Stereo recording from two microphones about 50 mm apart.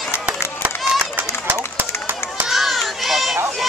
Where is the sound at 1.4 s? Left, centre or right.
Right.